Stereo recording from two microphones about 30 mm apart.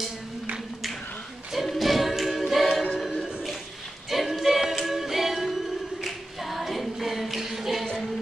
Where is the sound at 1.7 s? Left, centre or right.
Centre.